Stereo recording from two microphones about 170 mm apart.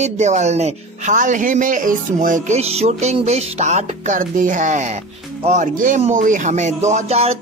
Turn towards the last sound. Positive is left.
turn(degrees=-35)  # may be behind; listen again after turning